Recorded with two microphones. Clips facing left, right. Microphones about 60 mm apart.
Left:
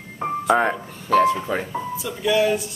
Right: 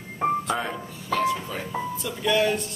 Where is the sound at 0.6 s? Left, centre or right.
Left.